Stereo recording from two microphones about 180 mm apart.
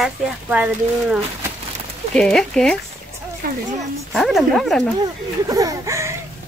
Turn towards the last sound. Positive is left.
turn(degrees=-15)  # may be behind; listen again after turning